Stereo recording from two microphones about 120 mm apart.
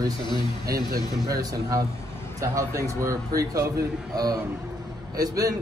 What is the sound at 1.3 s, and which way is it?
A man's voice, 30° right (ahead or behind).